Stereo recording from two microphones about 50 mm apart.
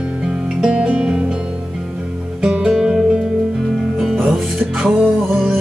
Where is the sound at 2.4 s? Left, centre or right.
Centre.